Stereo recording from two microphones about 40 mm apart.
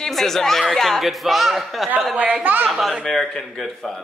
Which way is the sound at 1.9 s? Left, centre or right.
Right.